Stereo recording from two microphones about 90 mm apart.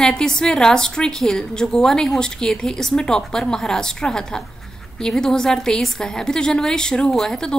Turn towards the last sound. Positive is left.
turn(degrees=5)  # may be behind; listen again after turning